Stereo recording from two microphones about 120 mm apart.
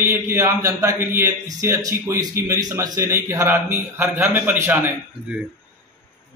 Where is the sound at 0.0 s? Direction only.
20° right (ahead or behind).